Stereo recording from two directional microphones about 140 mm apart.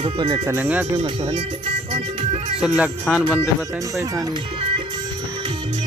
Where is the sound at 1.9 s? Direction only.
45° right (ahead or behind).